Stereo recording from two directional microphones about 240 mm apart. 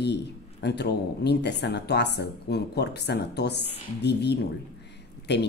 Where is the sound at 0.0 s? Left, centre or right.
Left.